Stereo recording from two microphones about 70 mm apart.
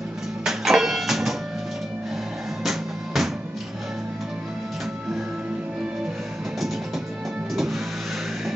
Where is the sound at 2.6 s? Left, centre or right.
Centre.